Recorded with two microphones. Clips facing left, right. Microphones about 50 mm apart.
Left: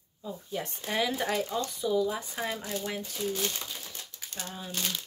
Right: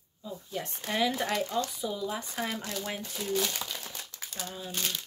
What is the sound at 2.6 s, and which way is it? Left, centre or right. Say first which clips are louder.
Speech: left 1 dB; right.